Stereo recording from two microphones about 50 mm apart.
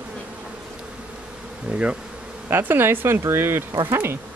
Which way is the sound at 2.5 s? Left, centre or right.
Right.